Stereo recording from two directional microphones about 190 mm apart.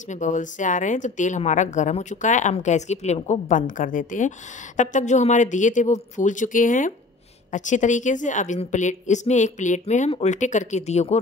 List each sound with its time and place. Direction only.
0.1 s a woman's voice: 40° left (ahead or behind)